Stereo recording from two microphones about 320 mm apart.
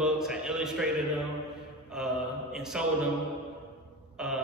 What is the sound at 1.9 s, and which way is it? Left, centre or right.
Mantra, centre.